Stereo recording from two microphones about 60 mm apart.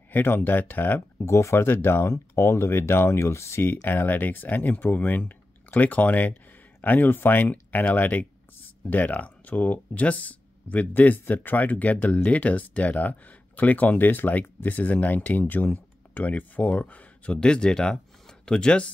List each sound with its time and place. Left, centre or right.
0.1 s speech: left
1.2 s speech: left
1.7 s speech: left
3.6 s speech: left; by 18.9 s centre